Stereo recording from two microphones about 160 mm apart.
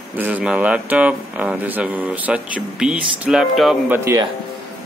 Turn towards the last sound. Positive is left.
turn(degrees=-15)  # may be behind; listen again after turning